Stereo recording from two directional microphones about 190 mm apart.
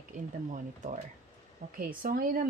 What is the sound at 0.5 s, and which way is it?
Speech, 40° right (ahead or behind).